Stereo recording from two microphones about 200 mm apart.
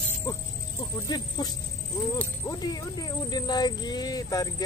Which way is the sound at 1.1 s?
20° left (ahead or behind).